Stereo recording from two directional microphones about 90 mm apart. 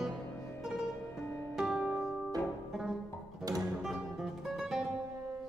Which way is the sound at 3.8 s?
Centre (ahead or behind).